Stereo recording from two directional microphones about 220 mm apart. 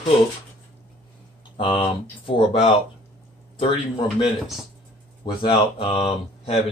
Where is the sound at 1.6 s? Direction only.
25° left (ahead or behind).